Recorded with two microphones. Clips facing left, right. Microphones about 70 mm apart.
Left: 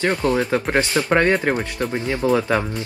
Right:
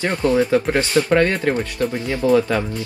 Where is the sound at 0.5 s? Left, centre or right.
Left.